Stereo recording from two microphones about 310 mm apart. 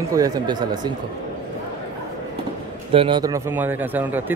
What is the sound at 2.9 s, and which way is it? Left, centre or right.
Speech, centre.